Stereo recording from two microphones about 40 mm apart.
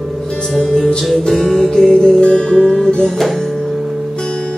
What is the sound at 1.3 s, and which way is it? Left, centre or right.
Music, centre.